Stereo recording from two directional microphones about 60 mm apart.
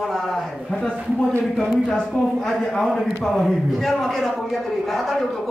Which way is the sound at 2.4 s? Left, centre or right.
Centre.